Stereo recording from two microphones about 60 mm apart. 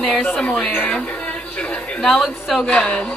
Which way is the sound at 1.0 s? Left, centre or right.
Left.